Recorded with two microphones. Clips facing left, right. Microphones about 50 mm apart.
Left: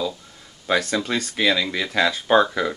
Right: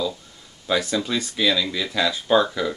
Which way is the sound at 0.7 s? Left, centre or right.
Left.